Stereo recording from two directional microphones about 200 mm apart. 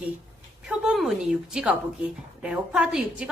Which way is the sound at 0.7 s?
5° right (ahead or behind).